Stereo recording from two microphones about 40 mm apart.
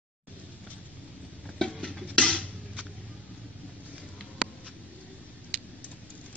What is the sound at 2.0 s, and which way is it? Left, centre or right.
Music, centre.